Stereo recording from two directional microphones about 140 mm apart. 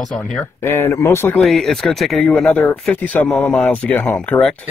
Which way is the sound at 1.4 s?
Centre (ahead or behind).